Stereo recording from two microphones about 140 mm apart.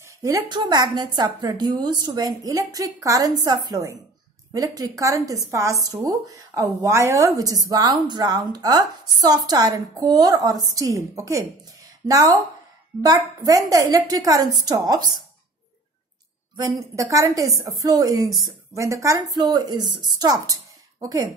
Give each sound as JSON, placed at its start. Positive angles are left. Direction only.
{"t": 0.0, "sound": "speech", "side_deg": -25}
{"t": 16.5, "sound": "speech", "side_deg": -25}